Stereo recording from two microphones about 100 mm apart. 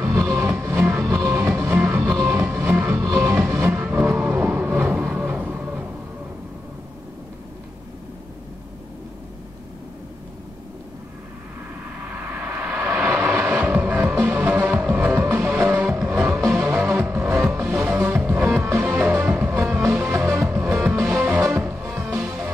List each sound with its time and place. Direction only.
0.1 s music: 30° right (ahead or behind)
1.0 s music: 30° right (ahead or behind)
1.3 s music: 20° right (ahead or behind)
2.6 s music: 20° right (ahead or behind)
12.4 s vehicle: 20° right (ahead or behind)
16.3 s music: 30° right (ahead or behind)
19.6 s music: 30° right (ahead or behind)